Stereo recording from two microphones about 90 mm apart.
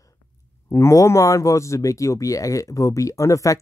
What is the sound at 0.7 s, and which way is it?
Speech, 30° left (ahead or behind).